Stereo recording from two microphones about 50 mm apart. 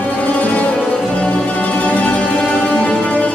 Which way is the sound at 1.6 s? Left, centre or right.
Left.